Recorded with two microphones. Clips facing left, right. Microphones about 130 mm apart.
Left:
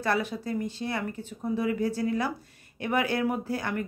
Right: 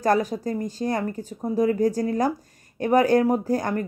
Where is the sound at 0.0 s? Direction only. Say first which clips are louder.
Right 7 dB; 40° right (ahead or behind).